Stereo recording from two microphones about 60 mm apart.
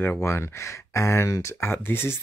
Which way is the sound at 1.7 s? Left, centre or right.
Left.